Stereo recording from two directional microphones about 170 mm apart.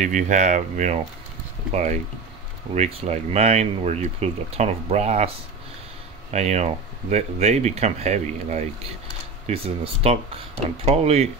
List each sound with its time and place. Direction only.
0.0 s speech: 45° right (ahead or behind)
6.3 s speech: 40° right (ahead or behind)
10.0 s speech: 35° right (ahead or behind)